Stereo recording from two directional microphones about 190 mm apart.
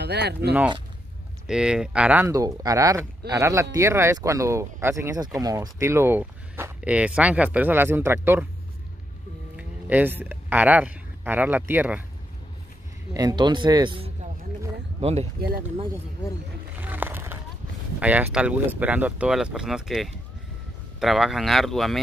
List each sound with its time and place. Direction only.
0.0 s speech: 60° right (ahead or behind)
1.5 s speech: 5° right (ahead or behind)
9.6 s speech: 10° right (ahead or behind)
13.1 s speech: 20° right (ahead or behind)
16.8 s a sound: 10° right (ahead or behind)
17.9 s speech: 5° right (ahead or behind)